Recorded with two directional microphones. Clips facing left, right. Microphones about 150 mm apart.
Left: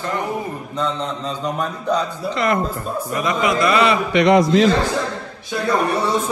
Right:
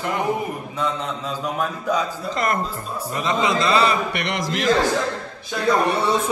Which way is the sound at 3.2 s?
30° right (ahead or behind).